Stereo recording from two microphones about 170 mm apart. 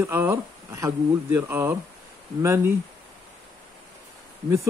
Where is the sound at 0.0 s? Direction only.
15° right (ahead or behind).